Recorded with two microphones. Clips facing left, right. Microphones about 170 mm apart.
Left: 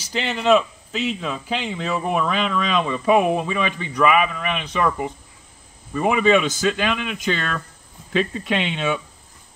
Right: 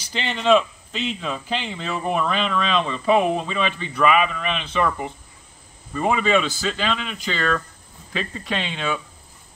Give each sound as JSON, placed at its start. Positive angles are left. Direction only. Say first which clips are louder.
{"t": 0.0, "sound": "a man's voice", "louder": "left 2 dB", "side_deg": 5}
{"t": 8.5, "sound": "speech", "louder": "left 3 dB", "side_deg": 20}